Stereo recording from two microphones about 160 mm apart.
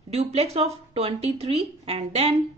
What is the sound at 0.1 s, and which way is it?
Speech, 40° right (ahead or behind).